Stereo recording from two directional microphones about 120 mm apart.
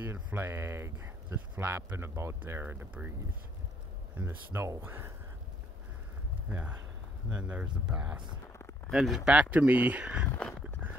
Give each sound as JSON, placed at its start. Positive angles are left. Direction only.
{"t": 0.0, "sound": "speech", "side_deg": -15}
{"t": 4.2, "sound": "speech", "side_deg": -15}
{"t": 6.5, "sound": "speech", "side_deg": -15}